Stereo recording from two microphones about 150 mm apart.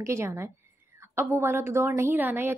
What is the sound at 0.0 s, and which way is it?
A woman's voice, 20° right (ahead or behind).